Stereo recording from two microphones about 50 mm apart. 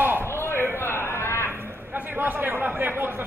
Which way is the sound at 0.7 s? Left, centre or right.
Left.